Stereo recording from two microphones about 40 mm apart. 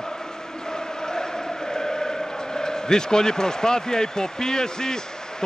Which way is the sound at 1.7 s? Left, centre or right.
Centre.